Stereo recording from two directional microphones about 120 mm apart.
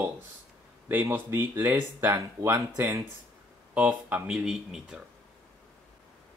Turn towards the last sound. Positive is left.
turn(degrees=-5)  # may be behind; listen again after turning